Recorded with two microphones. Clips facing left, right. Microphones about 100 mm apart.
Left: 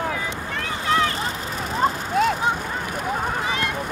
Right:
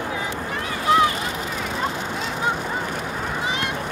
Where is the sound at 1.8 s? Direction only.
50° left (ahead or behind).